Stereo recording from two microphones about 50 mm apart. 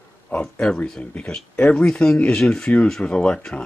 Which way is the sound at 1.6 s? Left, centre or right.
Left.